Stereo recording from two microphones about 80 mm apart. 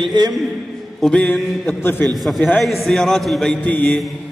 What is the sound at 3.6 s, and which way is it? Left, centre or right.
Mantra, centre.